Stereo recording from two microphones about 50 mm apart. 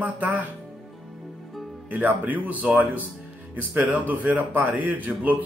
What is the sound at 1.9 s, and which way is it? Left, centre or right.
A man's voice, right.